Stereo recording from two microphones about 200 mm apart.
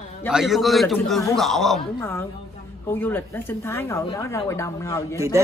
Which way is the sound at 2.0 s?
10° left (ahead or behind).